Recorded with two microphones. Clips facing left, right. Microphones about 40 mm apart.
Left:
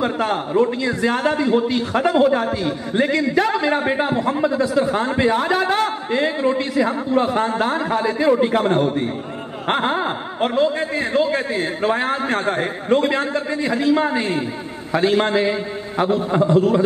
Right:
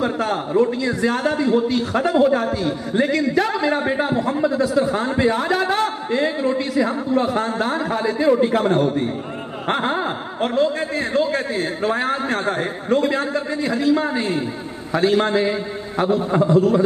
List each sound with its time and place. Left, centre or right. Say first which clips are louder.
0.0 s a man's voice: left 1 dB; left
4.5 s a man's voice: right 1 dB; centre
5.4 s a man's voice: left 1 dB; centre
5.7 s a man's voice: left 1 dB; centre